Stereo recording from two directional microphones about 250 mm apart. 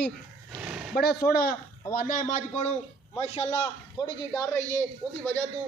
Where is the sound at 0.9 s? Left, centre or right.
Left.